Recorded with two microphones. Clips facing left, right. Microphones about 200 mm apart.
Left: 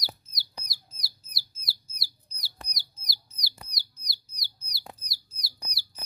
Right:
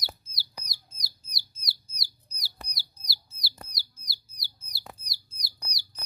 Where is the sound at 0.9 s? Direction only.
Centre (ahead or behind).